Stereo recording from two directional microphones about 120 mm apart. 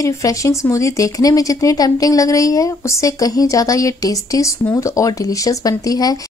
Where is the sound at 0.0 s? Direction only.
25° left (ahead or behind).